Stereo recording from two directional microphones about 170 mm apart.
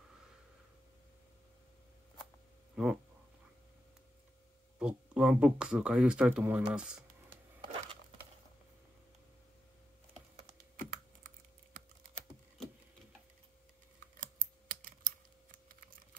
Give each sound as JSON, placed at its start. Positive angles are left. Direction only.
{"t": 2.7, "sound": "speech", "side_deg": -5}
{"t": 4.7, "sound": "speech", "side_deg": -5}
{"t": 6.7, "sound": "computer keyboard", "side_deg": -5}
{"t": 10.8, "sound": "computer keyboard", "side_deg": -50}
{"t": 13.9, "sound": "typing", "side_deg": -55}